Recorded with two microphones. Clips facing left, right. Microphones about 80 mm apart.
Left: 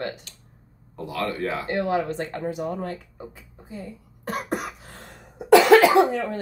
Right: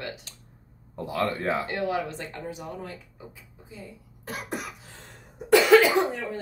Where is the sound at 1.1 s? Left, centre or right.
Right.